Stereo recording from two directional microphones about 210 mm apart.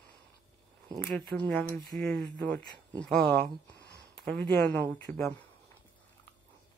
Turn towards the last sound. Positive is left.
turn(degrees=10)  # may be behind; listen again after turning